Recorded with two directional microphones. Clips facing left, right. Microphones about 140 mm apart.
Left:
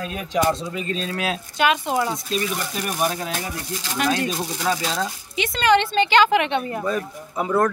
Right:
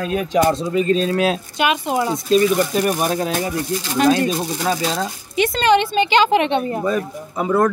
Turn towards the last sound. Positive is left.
turn(degrees=0)  # may be behind; listen again after turning